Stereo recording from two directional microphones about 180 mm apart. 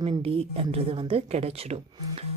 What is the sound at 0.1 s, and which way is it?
A woman's voice, 30° right (ahead or behind).